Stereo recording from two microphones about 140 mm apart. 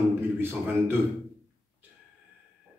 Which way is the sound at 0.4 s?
15° right (ahead or behind).